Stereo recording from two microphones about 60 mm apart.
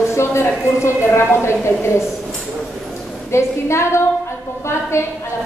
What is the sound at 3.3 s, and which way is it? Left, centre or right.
A woman's voice, left.